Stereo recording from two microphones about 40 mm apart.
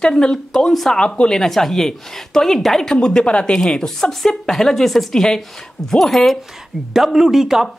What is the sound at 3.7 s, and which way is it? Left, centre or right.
A woman's voice, centre.